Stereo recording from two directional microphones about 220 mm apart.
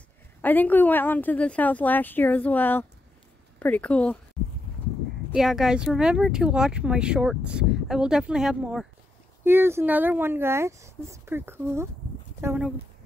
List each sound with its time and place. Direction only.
0.4 s a woman's voice: 10° left (ahead or behind)
5.3 s speech: centre (ahead or behind)